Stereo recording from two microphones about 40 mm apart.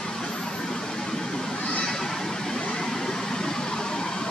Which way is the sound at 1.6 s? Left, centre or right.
Centre.